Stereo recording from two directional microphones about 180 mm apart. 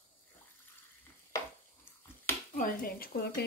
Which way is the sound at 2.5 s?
55° left (ahead or behind).